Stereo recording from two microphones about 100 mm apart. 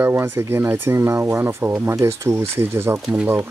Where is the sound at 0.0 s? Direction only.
25° right (ahead or behind).